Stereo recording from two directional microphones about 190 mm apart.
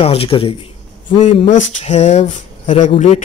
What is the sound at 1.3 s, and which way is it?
Speech, 40° left (ahead or behind).